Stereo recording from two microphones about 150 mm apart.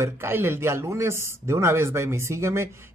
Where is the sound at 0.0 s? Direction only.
15° right (ahead or behind).